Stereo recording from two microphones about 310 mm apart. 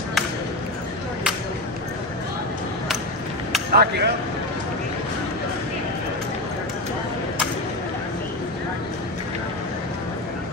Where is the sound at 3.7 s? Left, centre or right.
Right.